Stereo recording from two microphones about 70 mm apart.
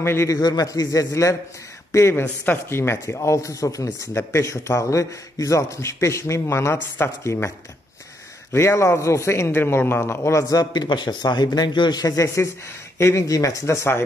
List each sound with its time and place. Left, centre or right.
0.0 s a man's voice: left
0.3 s a man's voice: left
1.9 s a man's voice: left
2.2 s a man's voice: left
4.1 s a man's voice: left
8.5 s a man's voice: left
10.5 s a man's voice: left
12.4 s a man's voice: left